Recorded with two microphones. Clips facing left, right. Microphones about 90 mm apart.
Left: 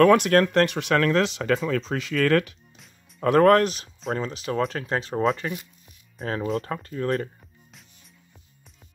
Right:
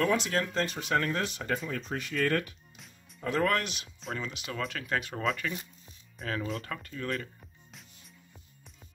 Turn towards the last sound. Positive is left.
turn(degrees=35)  # may be behind; listen again after turning